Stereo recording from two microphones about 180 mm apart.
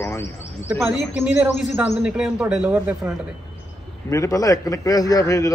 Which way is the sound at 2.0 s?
5° right (ahead or behind).